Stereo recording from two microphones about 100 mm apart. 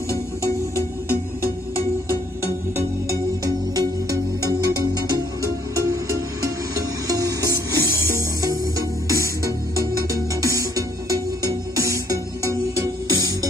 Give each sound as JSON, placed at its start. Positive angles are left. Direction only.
{"t": 0.7, "sound": "music", "side_deg": -25}